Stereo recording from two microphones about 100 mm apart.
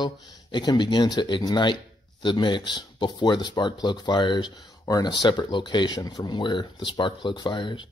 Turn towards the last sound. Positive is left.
turn(degrees=50)  # may be behind; listen again after turning